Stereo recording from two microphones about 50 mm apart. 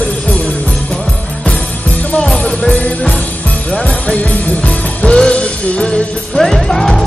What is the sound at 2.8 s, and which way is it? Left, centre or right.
Music, left.